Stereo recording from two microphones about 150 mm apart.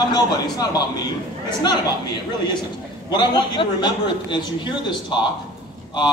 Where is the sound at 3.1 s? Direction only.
30° left (ahead or behind).